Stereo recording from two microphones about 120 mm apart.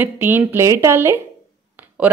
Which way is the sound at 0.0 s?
15° right (ahead or behind).